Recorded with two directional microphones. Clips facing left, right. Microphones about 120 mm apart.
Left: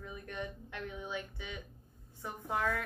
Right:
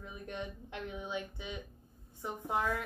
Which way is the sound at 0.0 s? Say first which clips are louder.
Even; 20° right (ahead or behind).